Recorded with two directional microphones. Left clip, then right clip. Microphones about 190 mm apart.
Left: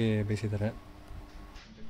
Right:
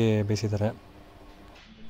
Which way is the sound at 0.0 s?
25° right (ahead or behind).